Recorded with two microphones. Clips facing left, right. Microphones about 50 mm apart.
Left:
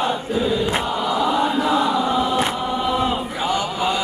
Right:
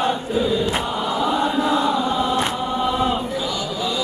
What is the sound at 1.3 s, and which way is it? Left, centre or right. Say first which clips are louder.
Chant: right 1 dB; centre.